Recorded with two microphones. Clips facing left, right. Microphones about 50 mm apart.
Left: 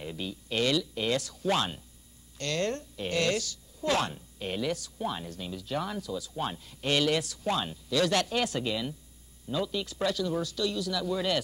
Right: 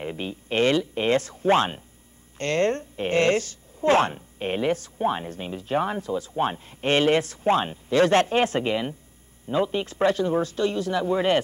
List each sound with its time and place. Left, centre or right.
0.0 s a woman's voice: right